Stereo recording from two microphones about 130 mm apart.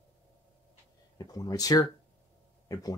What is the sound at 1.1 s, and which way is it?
Speech, 30° left (ahead or behind).